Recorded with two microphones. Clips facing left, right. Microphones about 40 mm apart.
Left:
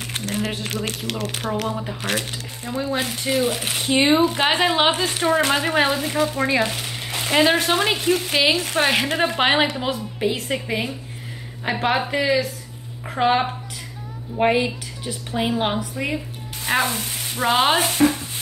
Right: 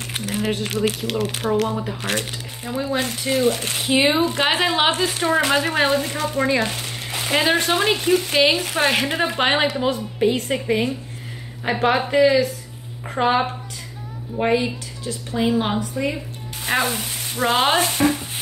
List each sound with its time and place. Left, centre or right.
0.1 s a woman's voice: centre
14.4 s a woman's voice: centre
16.8 s sizzle: centre
17.4 s a woman's voice: centre